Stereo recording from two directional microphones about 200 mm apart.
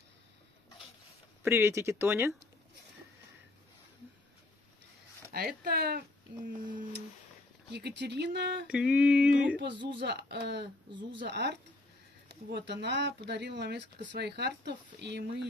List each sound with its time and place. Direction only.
1.4 s speech: 15° right (ahead or behind)
5.3 s speech: 50° right (ahead or behind)
7.7 s speech: 60° right (ahead or behind)
8.6 s a sound: 5° right (ahead or behind)
9.9 s speech: 55° right (ahead or behind)
10.9 s speech: 25° right (ahead or behind)
11.1 s speech: 60° right (ahead or behind)